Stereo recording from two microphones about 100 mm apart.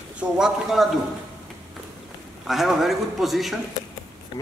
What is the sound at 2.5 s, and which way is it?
A man's voice, centre (ahead or behind).